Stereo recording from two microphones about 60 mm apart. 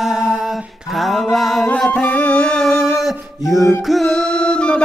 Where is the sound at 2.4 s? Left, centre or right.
Centre.